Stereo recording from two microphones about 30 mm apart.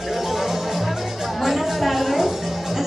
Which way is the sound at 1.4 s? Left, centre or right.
Centre.